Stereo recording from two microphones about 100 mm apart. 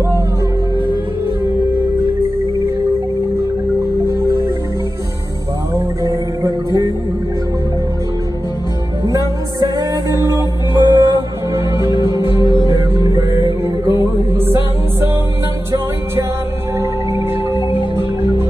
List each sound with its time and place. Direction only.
6.0 s music: 35° right (ahead or behind)
9.0 s music: 40° right (ahead or behind)
11.5 s music: 30° right (ahead or behind)
12.2 s music: 50° left (ahead or behind)
13.1 s music: 30° right (ahead or behind)